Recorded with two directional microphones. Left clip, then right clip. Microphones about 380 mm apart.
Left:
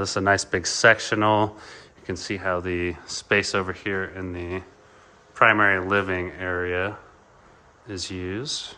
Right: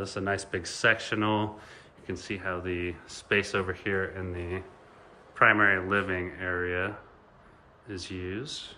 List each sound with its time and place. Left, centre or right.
0.0 s speech: centre